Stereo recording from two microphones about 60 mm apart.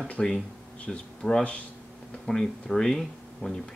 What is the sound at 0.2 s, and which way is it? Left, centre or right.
Speech, centre.